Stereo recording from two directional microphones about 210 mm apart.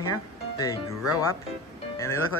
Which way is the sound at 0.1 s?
15° left (ahead or behind).